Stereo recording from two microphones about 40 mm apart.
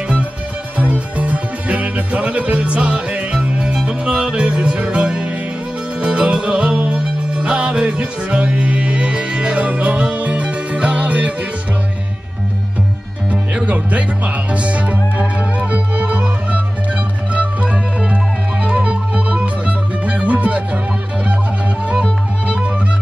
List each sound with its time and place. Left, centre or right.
0.7 s music: right
13.7 s music: right